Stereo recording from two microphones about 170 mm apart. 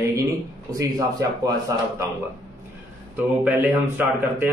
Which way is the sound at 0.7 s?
20° right (ahead or behind).